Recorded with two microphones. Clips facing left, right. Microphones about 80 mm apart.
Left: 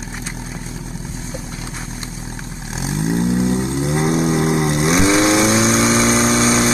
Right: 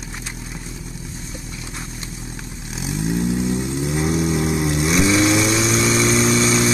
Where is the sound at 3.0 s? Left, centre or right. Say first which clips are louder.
Left 3 dB; left.